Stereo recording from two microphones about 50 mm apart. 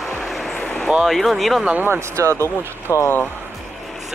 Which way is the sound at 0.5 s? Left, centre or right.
Left.